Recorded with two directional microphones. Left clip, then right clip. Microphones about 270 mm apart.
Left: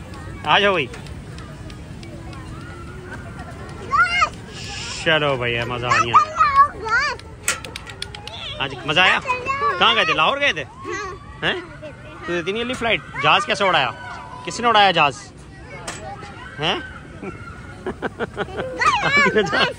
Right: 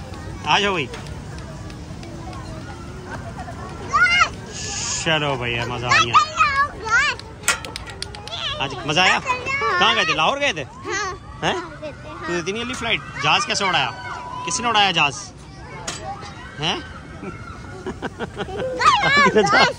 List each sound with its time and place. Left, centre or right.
0.4 s speech: centre
3.9 s children playing: left
4.6 s speech: centre
6.1 s music: centre
6.6 s children playing: centre
8.5 s speech: centre
9.2 s a child's voice: centre
9.8 s speech: centre
16.5 s a sound: centre
17.8 s speech: centre